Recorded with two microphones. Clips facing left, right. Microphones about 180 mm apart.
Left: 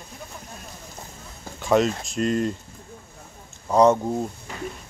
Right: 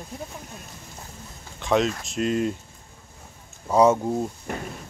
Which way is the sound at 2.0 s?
Centre (ahead or behind).